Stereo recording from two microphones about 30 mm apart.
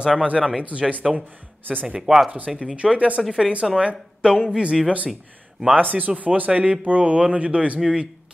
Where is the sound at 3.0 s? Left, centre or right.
Right.